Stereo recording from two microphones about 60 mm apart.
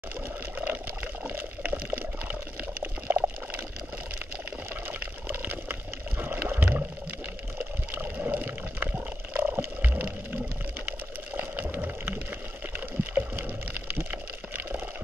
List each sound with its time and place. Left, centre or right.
0.6 s water: right
3.1 s liquid: right
5.3 s water: right
10.9 s a sound: right
13.4 s water: right
14.1 s a sound: right